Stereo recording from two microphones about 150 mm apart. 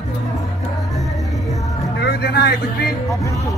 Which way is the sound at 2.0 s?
90° left.